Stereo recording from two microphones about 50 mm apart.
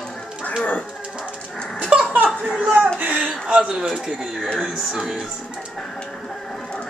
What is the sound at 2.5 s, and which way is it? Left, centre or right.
Speech, right.